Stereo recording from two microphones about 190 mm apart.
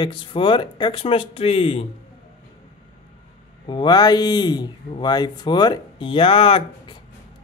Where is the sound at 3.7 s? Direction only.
25° left (ahead or behind).